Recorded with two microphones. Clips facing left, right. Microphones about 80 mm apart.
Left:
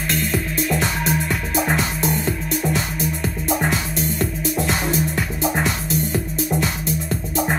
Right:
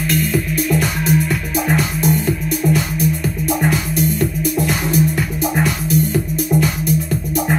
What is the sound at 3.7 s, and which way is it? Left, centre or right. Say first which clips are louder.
Music: right 5 dB; left.